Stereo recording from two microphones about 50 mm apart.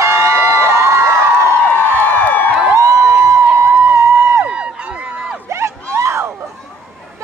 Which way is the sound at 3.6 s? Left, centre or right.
Right.